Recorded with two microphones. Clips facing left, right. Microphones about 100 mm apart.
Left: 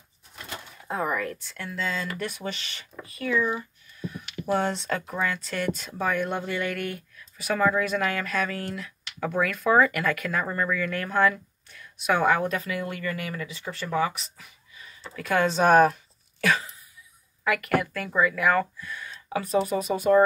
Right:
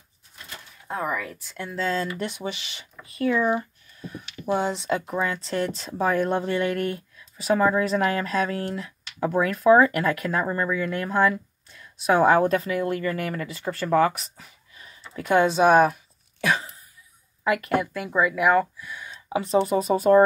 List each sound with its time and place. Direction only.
0.8 s speech: centre (ahead or behind)
1.8 s speech: 40° right (ahead or behind)
2.1 s speech: 25° right (ahead or behind)
2.4 s speech: 10° right (ahead or behind)
3.2 s speech: 40° right (ahead or behind)
4.5 s speech: 5° right (ahead or behind)
4.9 s speech: 20° right (ahead or behind)
5.3 s speech: 30° right (ahead or behind)
10.4 s speech: 20° right (ahead or behind)
15.4 s speech: 10° right (ahead or behind)
17.4 s speech: 25° right (ahead or behind)
19.2 s a sound: 20° right (ahead or behind)
19.5 s speech: 35° right (ahead or behind)